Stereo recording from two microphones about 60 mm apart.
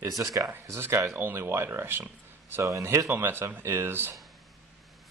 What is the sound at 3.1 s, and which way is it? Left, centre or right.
Speech, right.